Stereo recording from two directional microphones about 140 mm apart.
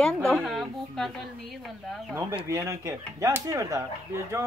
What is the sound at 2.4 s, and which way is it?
Speech, 20° right (ahead or behind).